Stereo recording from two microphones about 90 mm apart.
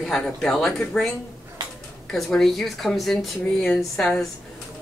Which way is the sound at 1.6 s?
50° right (ahead or behind).